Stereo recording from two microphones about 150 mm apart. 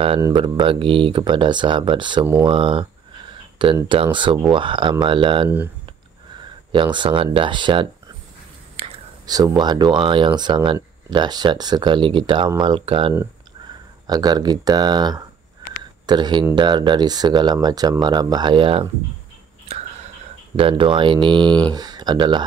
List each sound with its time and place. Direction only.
0.2 s speech: 30° right (ahead or behind)
6.7 s speech: 30° right (ahead or behind)
8.8 s whispering: 40° right (ahead or behind)
9.2 s speech: 25° right (ahead or behind)
20.5 s speech: 35° right (ahead or behind)